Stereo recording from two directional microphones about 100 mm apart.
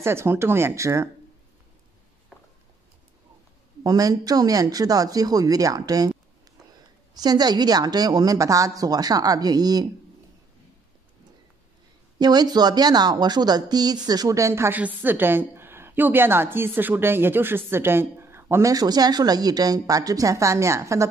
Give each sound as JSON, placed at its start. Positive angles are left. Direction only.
{"t": 0.0, "sound": "a woman's voice", "side_deg": -25}
{"t": 3.8, "sound": "speech", "side_deg": -35}
{"t": 7.2, "sound": "speech", "side_deg": -40}
{"t": 12.2, "sound": "a woman's voice", "side_deg": -45}
{"t": 18.7, "sound": "speech", "side_deg": -40}